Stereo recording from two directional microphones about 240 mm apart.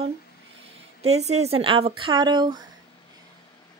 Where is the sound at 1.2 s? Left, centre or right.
Right.